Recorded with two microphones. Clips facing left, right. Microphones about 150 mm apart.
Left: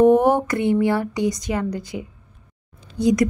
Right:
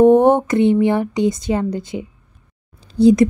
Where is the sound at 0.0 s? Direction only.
25° right (ahead or behind).